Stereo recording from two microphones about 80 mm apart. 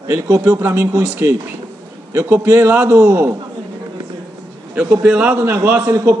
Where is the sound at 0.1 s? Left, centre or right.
Right.